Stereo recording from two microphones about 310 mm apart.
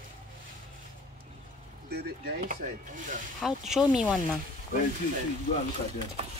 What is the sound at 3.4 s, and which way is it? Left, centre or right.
Speech, centre.